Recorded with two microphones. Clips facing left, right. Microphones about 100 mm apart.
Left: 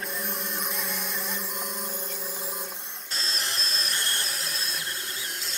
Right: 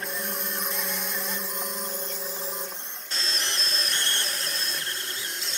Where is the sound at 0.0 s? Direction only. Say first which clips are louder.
Right 1 dB; centre (ahead or behind).